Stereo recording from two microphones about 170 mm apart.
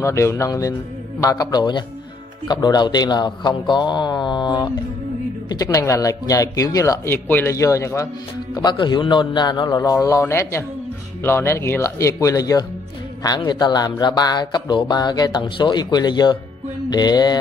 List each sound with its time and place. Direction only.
0.0 s speech: 15° left (ahead or behind)